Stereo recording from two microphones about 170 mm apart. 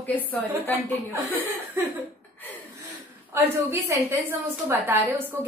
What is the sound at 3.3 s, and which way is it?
A woman's voice, 15° right (ahead or behind).